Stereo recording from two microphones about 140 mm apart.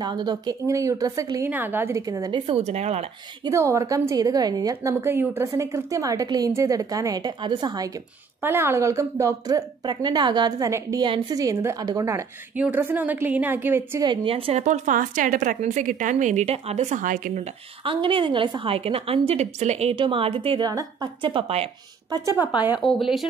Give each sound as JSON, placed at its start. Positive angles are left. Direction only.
{"t": 0.0, "sound": "a woman's voice", "side_deg": -30}
{"t": 2.4, "sound": "speech", "side_deg": -50}
{"t": 3.4, "sound": "a woman's voice", "side_deg": -20}
{"t": 8.4, "sound": "a woman's voice", "side_deg": -15}
{"t": 12.5, "sound": "a woman's voice", "side_deg": -10}
{"t": 14.0, "sound": "a woman's voice", "side_deg": -35}
{"t": 14.6, "sound": "a woman's voice", "side_deg": -65}
{"t": 17.8, "sound": "a woman's voice", "side_deg": -40}
{"t": 20.6, "sound": "a woman's voice", "side_deg": -30}
{"t": 22.1, "sound": "a woman's voice", "side_deg": -20}
{"t": 22.8, "sound": "speech", "side_deg": 0}